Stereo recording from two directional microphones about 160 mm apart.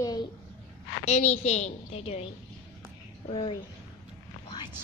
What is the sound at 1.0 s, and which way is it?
A woman's voice, 45° left (ahead or behind).